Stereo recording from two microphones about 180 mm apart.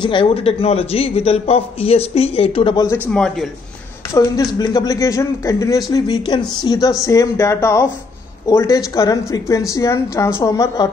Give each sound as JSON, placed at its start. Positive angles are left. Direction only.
{"t": 0.0, "sound": "a man's voice", "side_deg": 25}
{"t": 3.1, "sound": "a man's voice", "side_deg": 5}
{"t": 4.1, "sound": "speech", "side_deg": 20}